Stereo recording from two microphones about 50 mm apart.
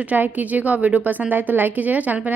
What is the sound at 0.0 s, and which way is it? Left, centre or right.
A woman's voice, right.